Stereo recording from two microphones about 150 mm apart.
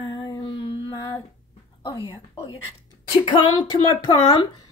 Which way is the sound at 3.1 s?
35° left (ahead or behind).